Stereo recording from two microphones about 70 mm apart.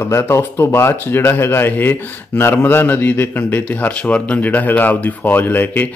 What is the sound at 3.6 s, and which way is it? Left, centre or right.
Speech, centre.